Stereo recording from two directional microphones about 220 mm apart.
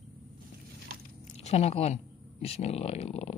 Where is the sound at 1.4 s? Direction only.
30° left (ahead or behind).